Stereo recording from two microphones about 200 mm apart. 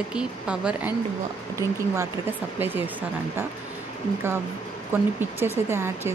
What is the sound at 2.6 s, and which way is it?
Speech, 10° right (ahead or behind).